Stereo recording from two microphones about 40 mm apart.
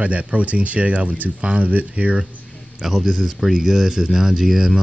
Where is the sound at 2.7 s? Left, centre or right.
Centre.